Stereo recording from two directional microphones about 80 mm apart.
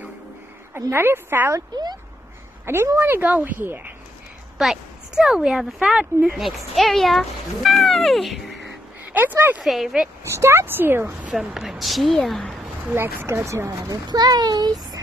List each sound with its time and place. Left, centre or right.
0.7 s a woman's voice: right
2.6 s a woman's voice: right
4.6 s speech: centre
9.1 s speech: right
9.6 s speech: centre
10.2 s speech: right
11.3 s speech: centre
12.9 s speech: right
14.0 s speech: right